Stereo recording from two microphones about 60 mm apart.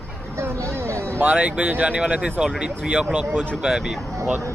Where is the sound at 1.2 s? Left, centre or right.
Centre.